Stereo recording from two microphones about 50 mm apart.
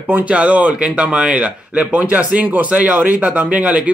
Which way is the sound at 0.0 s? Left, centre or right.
Right.